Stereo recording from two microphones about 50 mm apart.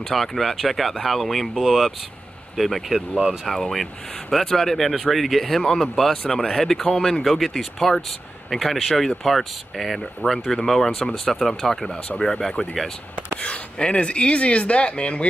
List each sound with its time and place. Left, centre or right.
0.1 s speech: centre
13.4 s speech: left